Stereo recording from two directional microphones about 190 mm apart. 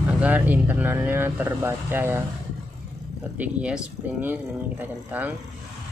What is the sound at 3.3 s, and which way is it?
Speech, 5° right (ahead or behind).